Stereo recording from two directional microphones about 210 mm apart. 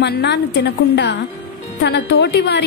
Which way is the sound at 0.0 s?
55° left (ahead or behind).